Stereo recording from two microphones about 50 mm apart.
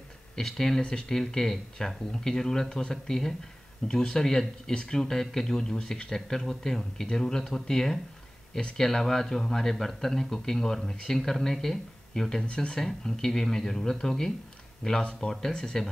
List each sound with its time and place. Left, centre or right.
0.4 s speech: centre